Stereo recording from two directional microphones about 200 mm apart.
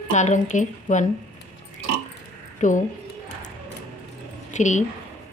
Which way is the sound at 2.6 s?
40° left (ahead or behind).